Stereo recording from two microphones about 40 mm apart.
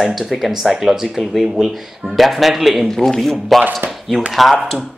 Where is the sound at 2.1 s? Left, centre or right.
Centre.